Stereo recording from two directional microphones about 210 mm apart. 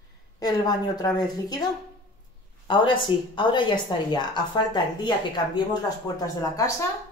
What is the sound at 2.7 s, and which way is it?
A woman's voice, 25° left (ahead or behind).